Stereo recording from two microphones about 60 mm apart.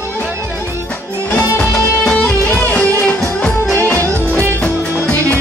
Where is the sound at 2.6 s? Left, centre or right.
Left.